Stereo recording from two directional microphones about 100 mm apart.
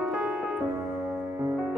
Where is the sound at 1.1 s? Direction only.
25° right (ahead or behind).